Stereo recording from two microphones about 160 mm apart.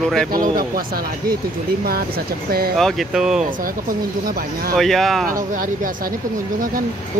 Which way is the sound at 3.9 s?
65° right (ahead or behind).